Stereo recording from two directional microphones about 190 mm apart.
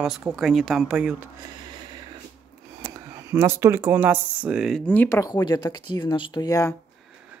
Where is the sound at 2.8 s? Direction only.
15° right (ahead or behind); by 6.7 s 15° left (ahead or behind).